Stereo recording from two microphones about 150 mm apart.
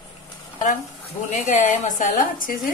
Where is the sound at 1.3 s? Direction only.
55° left (ahead or behind).